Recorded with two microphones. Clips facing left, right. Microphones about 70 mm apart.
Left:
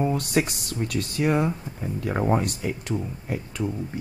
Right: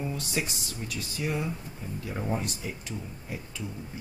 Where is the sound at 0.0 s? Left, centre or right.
Left.